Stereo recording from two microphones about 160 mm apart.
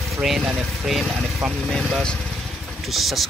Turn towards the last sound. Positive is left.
turn(degrees=0)  # may be behind; listen again after turning